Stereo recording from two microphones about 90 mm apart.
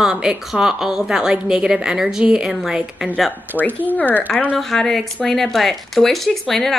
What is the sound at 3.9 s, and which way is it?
Speech, 20° left (ahead or behind).